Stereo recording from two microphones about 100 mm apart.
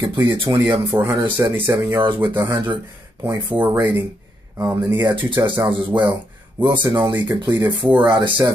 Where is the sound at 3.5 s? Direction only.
20° right (ahead or behind).